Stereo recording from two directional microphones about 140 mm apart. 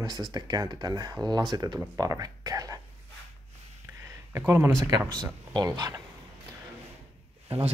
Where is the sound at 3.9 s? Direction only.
20° right (ahead or behind).